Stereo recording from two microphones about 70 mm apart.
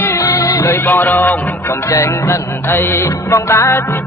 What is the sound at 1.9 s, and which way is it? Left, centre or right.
Music, left.